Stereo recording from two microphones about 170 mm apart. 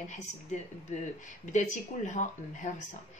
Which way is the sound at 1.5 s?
45° left (ahead or behind).